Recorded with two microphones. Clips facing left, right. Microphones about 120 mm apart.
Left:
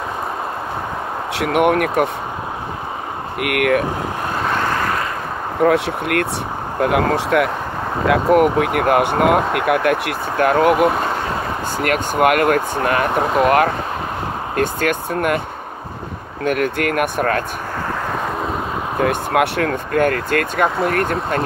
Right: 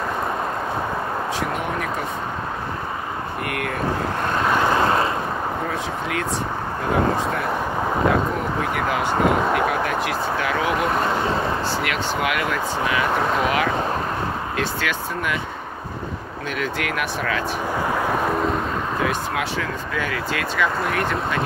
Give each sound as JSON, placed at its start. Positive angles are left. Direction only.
{"t": 1.3, "sound": "speech", "side_deg": 70}
{"t": 3.3, "sound": "speech", "side_deg": 70}
{"t": 4.7, "sound": "vehicle", "side_deg": -25}
{"t": 5.6, "sound": "speech", "side_deg": 70}
{"t": 16.4, "sound": "speech", "side_deg": 55}
{"t": 18.0, "sound": "a sound", "side_deg": -5}
{"t": 18.9, "sound": "speech", "side_deg": 55}